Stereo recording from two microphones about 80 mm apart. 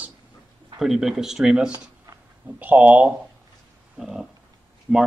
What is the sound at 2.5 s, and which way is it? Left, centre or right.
Speech, right.